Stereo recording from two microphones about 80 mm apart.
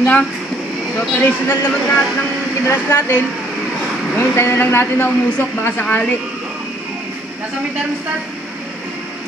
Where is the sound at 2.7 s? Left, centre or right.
Left.